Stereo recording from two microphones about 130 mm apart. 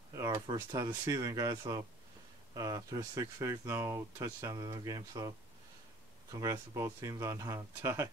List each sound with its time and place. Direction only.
0.1 s a sound: 25° right (ahead or behind)
0.5 s speech: 30° right (ahead or behind)
6.4 s speech: 25° right (ahead or behind)